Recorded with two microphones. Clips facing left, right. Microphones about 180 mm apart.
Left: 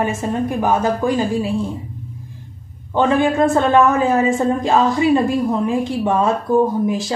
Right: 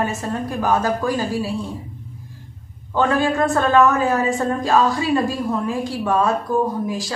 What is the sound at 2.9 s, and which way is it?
A woman's voice, 20° left (ahead or behind).